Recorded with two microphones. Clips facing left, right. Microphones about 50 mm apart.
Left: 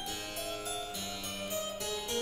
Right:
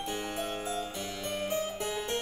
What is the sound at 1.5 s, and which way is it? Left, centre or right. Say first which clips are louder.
Music: right 2 dB; right.